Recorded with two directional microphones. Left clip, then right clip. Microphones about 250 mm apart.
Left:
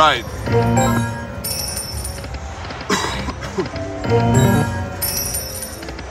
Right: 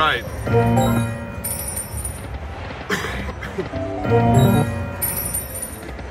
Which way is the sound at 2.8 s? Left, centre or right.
Centre.